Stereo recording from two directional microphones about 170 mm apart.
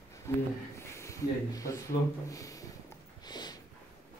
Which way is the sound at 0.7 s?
15° left (ahead or behind).